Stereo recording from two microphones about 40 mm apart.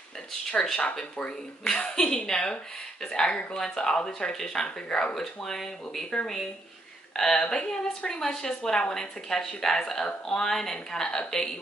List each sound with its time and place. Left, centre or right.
0.5 s a woman's voice: left
3.5 s a woman's voice: centre
5.1 s a woman's voice: centre
7.2 s a woman's voice: centre